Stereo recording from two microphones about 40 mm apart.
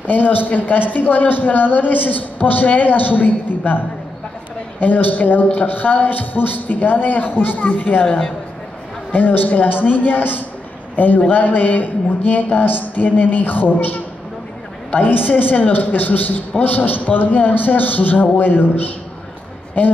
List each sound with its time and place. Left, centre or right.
0.0 s speech: left
8.0 s a man's voice: centre
9.1 s speech: left
11.0 s speech: left